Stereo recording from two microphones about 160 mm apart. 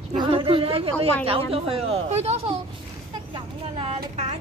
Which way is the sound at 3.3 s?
40° right (ahead or behind).